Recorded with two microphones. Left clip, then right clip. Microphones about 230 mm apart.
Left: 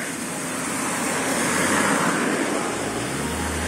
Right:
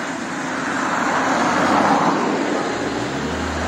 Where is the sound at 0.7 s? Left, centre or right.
Left.